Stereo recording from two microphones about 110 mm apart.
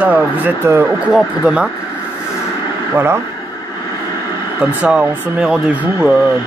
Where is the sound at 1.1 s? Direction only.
10° right (ahead or behind).